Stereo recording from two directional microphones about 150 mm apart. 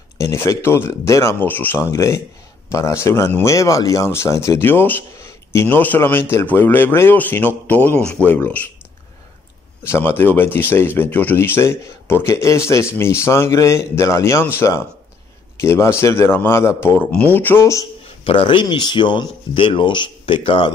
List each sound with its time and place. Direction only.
0.2 s speech: 20° left (ahead or behind)
9.8 s speech: 15° left (ahead or behind)
18.2 s speech: 35° left (ahead or behind)